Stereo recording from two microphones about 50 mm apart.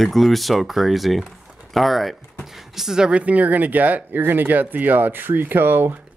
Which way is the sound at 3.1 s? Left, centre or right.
Right.